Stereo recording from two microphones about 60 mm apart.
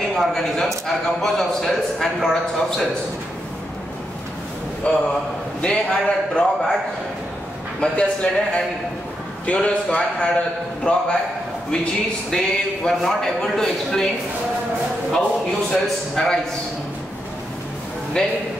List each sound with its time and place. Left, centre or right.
0.1 s a man's voice: centre
4.9 s a man's voice: centre
7.8 s a man's voice: centre
15.7 s a man's voice: centre
18.2 s a man's voice: centre